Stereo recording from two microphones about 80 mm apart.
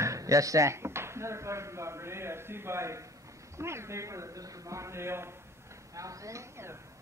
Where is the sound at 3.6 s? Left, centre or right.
Right.